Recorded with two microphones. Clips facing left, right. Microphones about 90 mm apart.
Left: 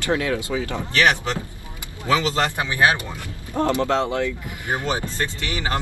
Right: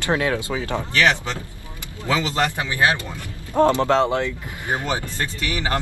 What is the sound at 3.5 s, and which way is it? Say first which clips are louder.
Speech: right 5 dB; 60° right (ahead or behind).